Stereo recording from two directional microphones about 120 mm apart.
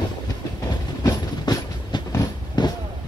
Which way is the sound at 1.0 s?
35° left (ahead or behind).